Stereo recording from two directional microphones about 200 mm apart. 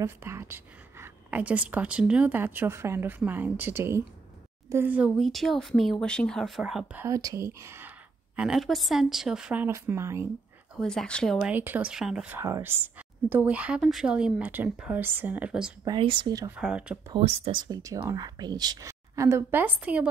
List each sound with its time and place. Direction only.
0.0 s speech: 15° right (ahead or behind)
8.4 s speech: centre (ahead or behind)
10.8 s speech: 5° left (ahead or behind)
11.4 s speech: 10° right (ahead or behind)
15.8 s speech: 25° right (ahead or behind)
16.5 s speech: 5° right (ahead or behind)
17.1 s speech: 30° right (ahead or behind); by 20.1 s 5° right (ahead or behind)